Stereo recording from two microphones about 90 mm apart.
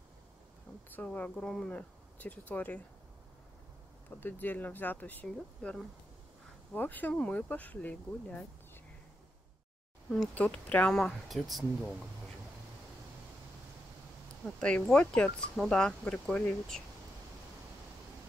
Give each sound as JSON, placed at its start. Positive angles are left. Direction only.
{"t": 0.8, "sound": "speech", "side_deg": 20}
{"t": 4.2, "sound": "speech", "side_deg": 20}
{"t": 10.3, "sound": "speech", "side_deg": 15}
{"t": 11.0, "sound": "speech", "side_deg": 0}
{"t": 14.4, "sound": "speech", "side_deg": 10}